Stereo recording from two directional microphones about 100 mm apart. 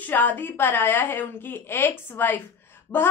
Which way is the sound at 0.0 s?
15° left (ahead or behind).